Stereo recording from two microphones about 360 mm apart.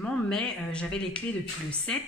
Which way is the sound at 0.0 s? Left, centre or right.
Centre.